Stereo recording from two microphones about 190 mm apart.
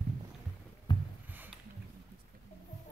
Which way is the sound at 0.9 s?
25° left (ahead or behind).